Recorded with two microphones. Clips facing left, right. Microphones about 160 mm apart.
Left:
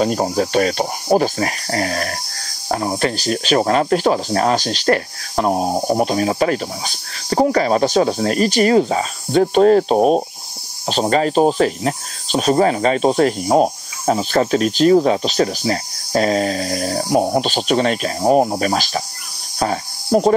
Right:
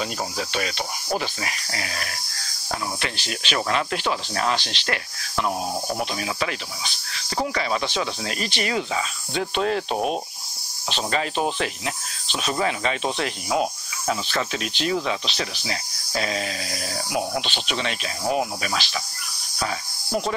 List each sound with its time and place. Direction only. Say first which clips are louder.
0.0 s speech: left 11 dB; 45° left (ahead or behind)